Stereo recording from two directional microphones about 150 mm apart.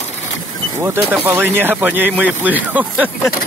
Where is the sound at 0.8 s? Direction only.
15° right (ahead or behind).